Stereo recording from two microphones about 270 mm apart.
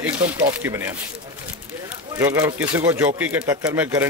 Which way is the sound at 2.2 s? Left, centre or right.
Centre.